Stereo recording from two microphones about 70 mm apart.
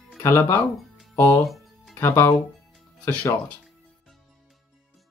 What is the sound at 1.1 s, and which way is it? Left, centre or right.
Speech, left.